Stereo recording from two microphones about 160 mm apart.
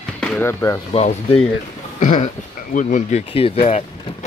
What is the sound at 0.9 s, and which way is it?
Speech, 40° left (ahead or behind).